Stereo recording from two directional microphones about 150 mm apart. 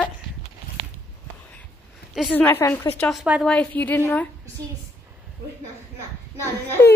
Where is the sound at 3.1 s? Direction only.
Centre (ahead or behind).